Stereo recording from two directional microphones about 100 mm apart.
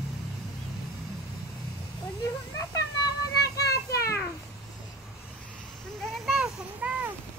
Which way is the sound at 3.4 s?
35° left (ahead or behind).